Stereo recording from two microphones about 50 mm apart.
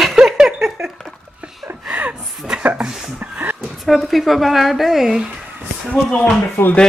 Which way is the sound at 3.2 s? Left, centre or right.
Right.